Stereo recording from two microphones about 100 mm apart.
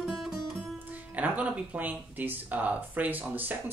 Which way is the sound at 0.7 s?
15° right (ahead or behind).